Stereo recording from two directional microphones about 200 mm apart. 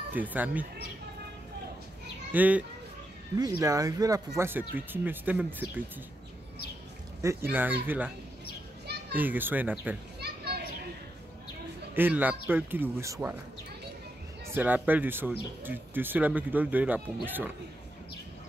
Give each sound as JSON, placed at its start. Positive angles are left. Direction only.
{"t": 0.1, "sound": "speech", "side_deg": -10}
{"t": 2.3, "sound": "speech", "side_deg": -10}
{"t": 7.2, "sound": "speech", "side_deg": -10}
{"t": 9.1, "sound": "speech", "side_deg": -10}
{"t": 10.2, "sound": "children playing", "side_deg": -55}
{"t": 11.9, "sound": "speech", "side_deg": -10}
{"t": 14.5, "sound": "speech", "side_deg": -10}